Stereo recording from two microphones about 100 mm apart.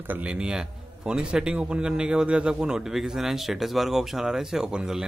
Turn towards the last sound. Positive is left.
turn(degrees=-5)  # may be behind; listen again after turning